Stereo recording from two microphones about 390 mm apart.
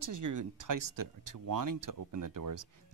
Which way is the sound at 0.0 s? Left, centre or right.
Right.